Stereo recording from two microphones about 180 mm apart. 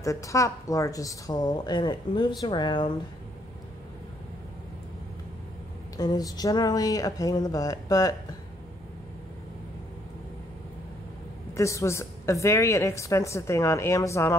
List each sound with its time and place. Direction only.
0.0 s a woman's voice: 15° left (ahead or behind)
5.9 s a woman's voice: 20° left (ahead or behind)
11.5 s a woman's voice: 15° left (ahead or behind)